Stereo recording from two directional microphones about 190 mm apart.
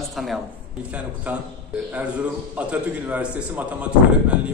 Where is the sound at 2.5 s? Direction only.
10° right (ahead or behind).